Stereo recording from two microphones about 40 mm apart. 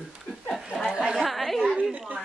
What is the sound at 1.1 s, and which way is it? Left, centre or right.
Speech, centre.